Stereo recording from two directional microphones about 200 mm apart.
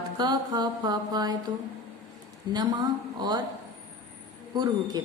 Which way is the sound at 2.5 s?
20° right (ahead or behind).